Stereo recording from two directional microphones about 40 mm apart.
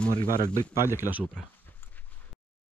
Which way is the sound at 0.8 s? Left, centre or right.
Right.